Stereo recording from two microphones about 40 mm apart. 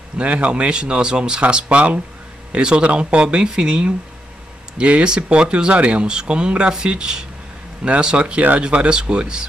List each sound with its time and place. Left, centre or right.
0.2 s speech: right